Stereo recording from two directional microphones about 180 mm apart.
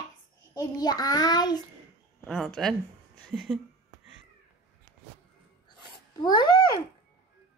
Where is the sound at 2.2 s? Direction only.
Centre (ahead or behind).